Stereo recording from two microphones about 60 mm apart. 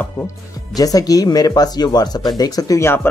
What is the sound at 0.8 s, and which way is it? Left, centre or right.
Speech, left.